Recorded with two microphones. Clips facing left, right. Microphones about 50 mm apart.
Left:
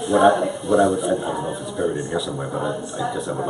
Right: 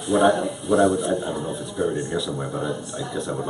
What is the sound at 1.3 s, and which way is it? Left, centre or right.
Speech, centre.